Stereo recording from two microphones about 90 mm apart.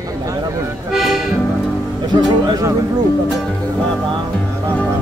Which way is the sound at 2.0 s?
55° right (ahead or behind).